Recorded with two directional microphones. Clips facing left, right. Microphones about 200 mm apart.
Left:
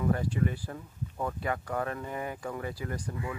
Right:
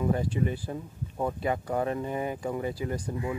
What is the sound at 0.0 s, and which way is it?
Speech, 20° right (ahead or behind).